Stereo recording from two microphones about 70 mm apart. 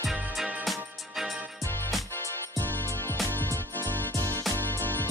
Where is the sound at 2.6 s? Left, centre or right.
Left.